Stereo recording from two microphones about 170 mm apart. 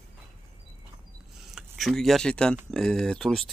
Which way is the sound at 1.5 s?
Centre (ahead or behind).